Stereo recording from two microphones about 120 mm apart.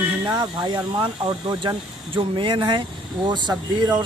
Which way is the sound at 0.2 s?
35° right (ahead or behind).